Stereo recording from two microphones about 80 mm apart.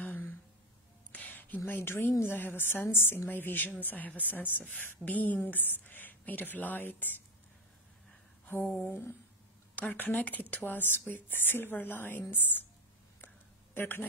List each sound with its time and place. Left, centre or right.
0.0 s gasp: left
1.1 s a sound: left
1.7 s a woman's voice: left
8.8 s a woman's voice: left
13.7 s a woman's voice: left